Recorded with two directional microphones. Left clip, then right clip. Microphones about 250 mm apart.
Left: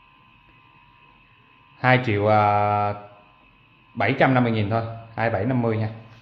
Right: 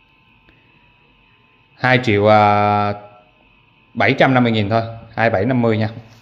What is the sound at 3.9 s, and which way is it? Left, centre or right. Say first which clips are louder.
A man's voice: right 6 dB; right.